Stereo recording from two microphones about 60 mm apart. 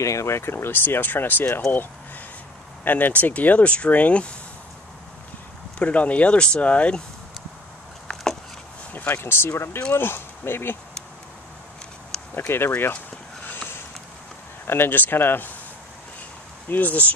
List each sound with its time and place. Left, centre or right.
0.0 s speech: left
1.4 s speech: left; by 4.4 s centre
5.8 s speech: left
8.1 s a sound: centre
9.1 s speech: left
12.4 s speech: left
13.5 s vehicle: left
14.7 s speech: left
16.6 s speech: left